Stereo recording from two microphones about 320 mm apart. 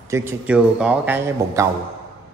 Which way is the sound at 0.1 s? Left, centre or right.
Centre.